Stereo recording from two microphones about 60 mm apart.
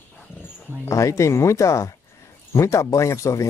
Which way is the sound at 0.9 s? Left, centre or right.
Left.